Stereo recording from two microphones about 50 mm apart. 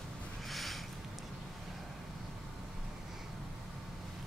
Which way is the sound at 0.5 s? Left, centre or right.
Centre.